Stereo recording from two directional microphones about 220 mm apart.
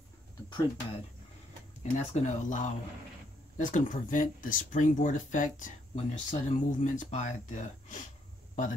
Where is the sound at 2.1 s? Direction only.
35° left (ahead or behind).